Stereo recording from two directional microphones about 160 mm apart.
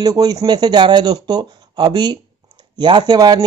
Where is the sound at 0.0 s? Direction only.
25° right (ahead or behind).